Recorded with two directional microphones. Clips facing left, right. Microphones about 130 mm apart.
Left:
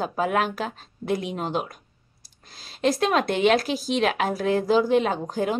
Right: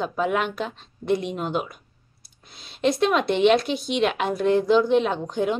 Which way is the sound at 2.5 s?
Centre (ahead or behind).